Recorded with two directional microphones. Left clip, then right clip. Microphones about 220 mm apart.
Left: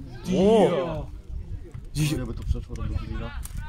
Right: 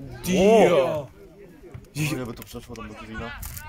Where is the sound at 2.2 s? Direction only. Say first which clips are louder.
Right 3 dB; 50° right (ahead or behind).